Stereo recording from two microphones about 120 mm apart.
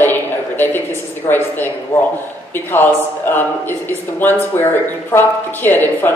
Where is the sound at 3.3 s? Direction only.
15° left (ahead or behind).